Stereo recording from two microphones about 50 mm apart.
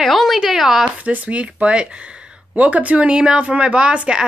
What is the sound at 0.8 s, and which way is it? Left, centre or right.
Speech, right.